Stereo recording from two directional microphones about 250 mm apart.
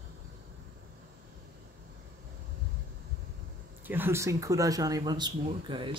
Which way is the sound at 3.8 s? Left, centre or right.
Centre.